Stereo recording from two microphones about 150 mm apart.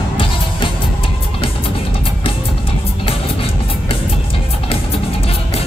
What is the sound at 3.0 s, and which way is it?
Music, 40° left (ahead or behind).